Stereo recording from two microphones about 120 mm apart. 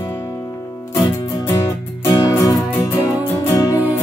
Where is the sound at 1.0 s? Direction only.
30° left (ahead or behind).